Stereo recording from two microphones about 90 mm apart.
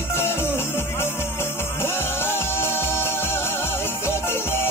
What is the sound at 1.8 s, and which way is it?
Music, 25° left (ahead or behind).